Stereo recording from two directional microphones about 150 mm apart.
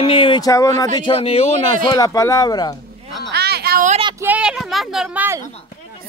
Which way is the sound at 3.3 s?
90° right.